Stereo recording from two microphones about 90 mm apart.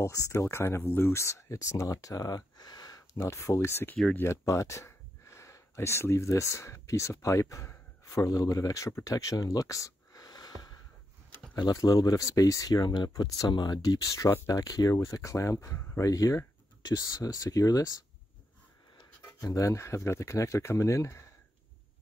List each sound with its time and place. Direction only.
0.0 s speech: 35° left (ahead or behind)
3.2 s speech: 30° left (ahead or behind)
13.5 s speech: 55° left (ahead or behind)
19.4 s speech: 35° left (ahead or behind)